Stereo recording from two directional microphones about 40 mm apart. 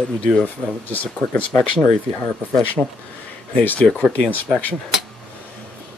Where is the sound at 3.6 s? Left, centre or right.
Left.